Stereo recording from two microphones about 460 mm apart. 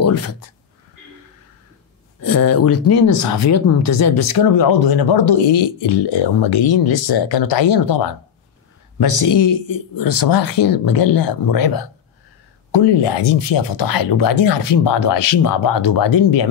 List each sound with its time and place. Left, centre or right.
0.0 s a sound: left
2.2 s speech: left
3.1 s speech: left
3.3 s speech: left